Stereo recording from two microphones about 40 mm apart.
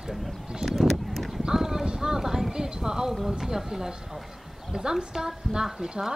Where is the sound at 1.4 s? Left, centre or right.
Centre.